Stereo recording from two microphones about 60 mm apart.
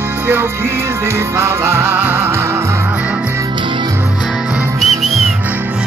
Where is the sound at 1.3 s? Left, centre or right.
Right.